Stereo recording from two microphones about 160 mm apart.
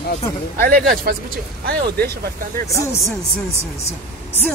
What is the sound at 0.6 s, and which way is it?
Speech, 65° right (ahead or behind).